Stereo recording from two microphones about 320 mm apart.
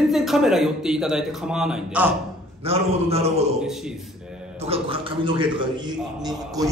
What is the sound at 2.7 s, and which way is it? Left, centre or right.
Speech, centre.